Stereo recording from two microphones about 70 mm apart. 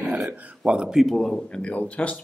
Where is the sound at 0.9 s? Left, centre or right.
Centre.